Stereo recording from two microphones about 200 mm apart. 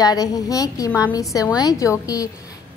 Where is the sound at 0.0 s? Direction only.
20° left (ahead or behind).